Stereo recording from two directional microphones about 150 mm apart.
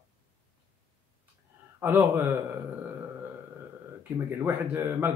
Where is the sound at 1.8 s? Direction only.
15° right (ahead or behind).